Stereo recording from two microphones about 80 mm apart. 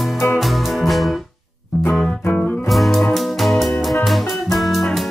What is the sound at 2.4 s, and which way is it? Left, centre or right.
Music, centre.